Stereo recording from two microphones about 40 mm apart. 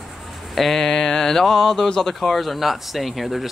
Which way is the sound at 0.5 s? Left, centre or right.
Centre.